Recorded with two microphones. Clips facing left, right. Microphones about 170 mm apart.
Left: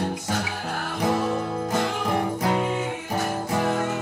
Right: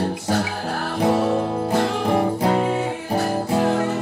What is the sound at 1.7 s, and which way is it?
Music, 35° right (ahead or behind).